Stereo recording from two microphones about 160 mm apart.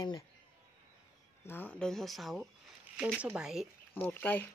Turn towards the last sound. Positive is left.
turn(degrees=10)  # may be behind; listen again after turning